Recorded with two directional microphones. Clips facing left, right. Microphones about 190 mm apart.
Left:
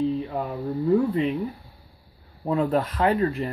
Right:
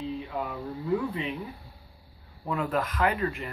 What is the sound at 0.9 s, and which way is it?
Speech, 40° left (ahead or behind).